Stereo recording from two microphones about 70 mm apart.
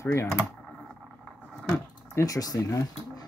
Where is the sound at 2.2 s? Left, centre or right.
Left.